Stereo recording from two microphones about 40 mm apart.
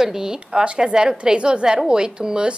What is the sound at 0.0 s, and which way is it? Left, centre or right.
A woman's voice, centre.